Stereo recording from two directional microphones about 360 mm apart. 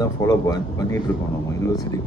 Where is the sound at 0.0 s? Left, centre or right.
Centre.